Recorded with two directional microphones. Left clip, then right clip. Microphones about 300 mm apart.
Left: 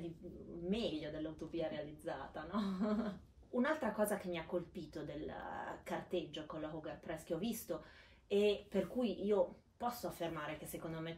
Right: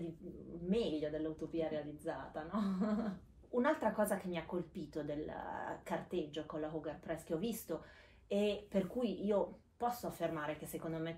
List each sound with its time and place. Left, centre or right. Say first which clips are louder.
0.7 s speech: right 4 dB; centre